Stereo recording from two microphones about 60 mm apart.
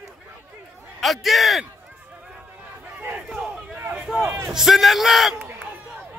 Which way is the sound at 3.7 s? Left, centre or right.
Right.